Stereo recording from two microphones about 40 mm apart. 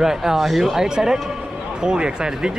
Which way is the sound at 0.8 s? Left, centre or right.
Centre.